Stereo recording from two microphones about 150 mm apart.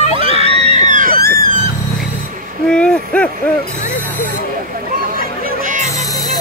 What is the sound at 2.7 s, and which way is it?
Hoot, 10° left (ahead or behind).